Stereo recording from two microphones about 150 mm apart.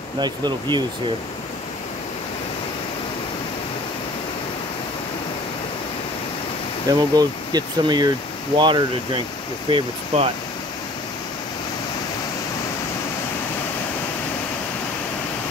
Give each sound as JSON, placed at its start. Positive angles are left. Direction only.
{"t": 0.2, "sound": "speech", "side_deg": -30}
{"t": 6.9, "sound": "speech", "side_deg": -25}